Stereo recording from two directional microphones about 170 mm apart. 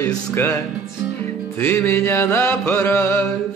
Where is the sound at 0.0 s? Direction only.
15° left (ahead or behind).